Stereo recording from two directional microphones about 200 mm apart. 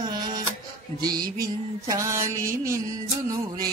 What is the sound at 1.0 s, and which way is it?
Mantra, 20° right (ahead or behind).